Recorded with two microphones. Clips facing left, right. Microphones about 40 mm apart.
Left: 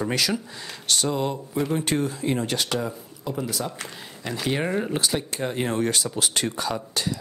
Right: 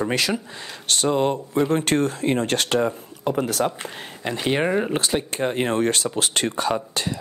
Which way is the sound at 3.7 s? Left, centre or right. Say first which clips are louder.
Right 5 dB; right.